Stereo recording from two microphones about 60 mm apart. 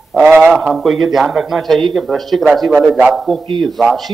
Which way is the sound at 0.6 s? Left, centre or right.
Centre.